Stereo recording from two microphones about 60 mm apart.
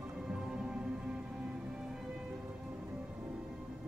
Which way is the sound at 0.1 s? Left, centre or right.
Centre.